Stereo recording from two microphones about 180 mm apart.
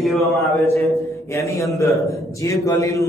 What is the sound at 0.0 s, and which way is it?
Speech, centre (ahead or behind).